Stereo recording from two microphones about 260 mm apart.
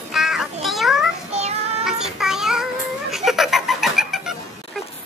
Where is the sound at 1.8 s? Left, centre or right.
Centre.